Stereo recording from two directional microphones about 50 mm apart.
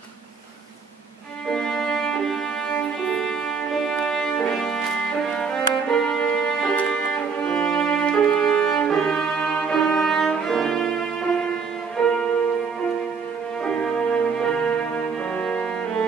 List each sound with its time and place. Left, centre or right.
1.5 s music: centre
5.3 s violin: centre
7.2 s music: left
8.8 s music: centre
13.7 s music: centre